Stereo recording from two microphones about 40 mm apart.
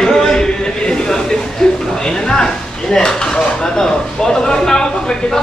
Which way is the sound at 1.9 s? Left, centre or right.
Centre.